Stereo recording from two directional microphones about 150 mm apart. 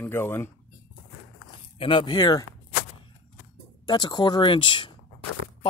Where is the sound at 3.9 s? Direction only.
30° left (ahead or behind).